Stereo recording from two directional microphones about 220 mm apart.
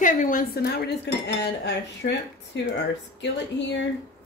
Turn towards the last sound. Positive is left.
turn(degrees=55)  # may be behind; listen again after turning